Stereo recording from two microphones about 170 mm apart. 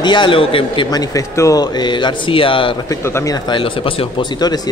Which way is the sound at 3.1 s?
20° left (ahead or behind).